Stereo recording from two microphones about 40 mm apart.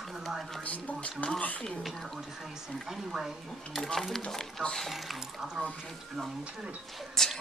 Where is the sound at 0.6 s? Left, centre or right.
Left.